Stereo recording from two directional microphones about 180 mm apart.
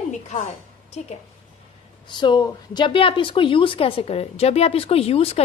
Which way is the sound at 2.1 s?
25° left (ahead or behind).